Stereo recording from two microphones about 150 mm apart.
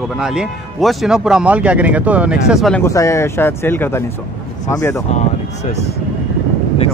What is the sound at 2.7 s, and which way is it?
Speech, 20° left (ahead or behind).